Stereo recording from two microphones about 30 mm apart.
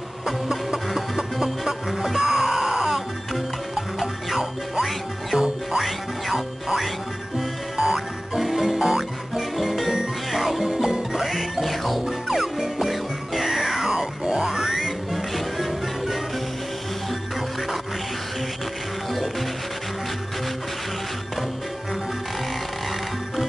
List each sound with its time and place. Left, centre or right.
0.8 s music: centre
2.9 s music: centre
10.3 s music: centre
10.6 s music: centre
11.7 s music: centre
12.3 s music: centre
12.8 s music: centre
14.7 s music: centre